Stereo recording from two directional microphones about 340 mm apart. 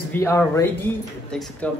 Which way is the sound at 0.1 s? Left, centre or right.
Centre.